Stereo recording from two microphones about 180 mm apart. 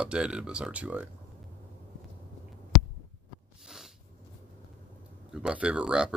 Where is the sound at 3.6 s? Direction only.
Centre (ahead or behind).